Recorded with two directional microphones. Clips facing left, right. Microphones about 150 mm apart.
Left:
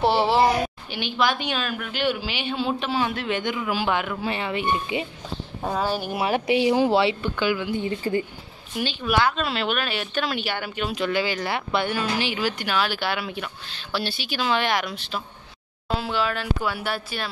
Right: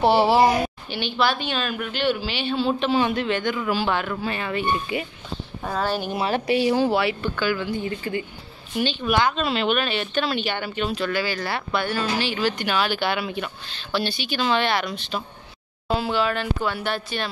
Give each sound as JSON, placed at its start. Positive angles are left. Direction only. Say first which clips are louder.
{"t": 0.0, "sound": "speech", "louder": "right 2 dB", "side_deg": 0}
{"t": 0.8, "sound": "speech", "louder": "right 1 dB", "side_deg": 10}
{"t": 3.3, "sound": "speech", "louder": "right 2 dB", "side_deg": 15}
{"t": 7.8, "sound": "speech", "louder": "left 2 dB", "side_deg": 35}
{"t": 8.7, "sound": "speech", "louder": "right 2 dB", "side_deg": 0}
{"t": 11.0, "sound": "speech", "louder": "left 1 dB", "side_deg": 20}